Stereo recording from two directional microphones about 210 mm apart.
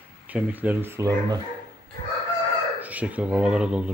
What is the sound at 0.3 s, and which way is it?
Speech, 10° right (ahead or behind).